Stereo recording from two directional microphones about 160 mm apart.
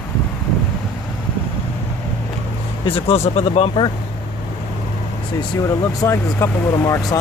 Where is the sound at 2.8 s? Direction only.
35° left (ahead or behind).